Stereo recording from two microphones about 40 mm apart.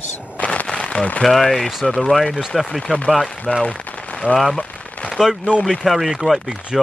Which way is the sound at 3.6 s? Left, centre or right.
Left.